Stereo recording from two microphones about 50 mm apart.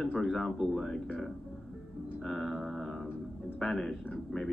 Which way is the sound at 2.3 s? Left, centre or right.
Centre.